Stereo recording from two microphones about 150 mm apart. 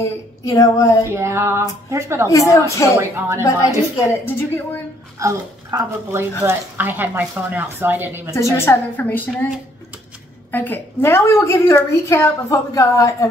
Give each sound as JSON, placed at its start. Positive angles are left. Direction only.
{"t": 0.0, "sound": "a woman's voice", "side_deg": 20}
{"t": 1.1, "sound": "speech", "side_deg": -15}
{"t": 2.2, "sound": "a woman's voice", "side_deg": 20}
{"t": 3.0, "sound": "speech", "side_deg": -20}
{"t": 4.2, "sound": "a woman's voice", "side_deg": 15}
{"t": 5.2, "sound": "speech", "side_deg": -20}
{"t": 8.3, "sound": "a woman's voice", "side_deg": 20}
{"t": 10.5, "sound": "a woman's voice", "side_deg": 10}